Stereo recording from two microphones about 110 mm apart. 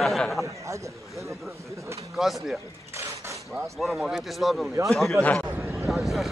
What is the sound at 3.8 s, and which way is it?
Speech, centre (ahead or behind).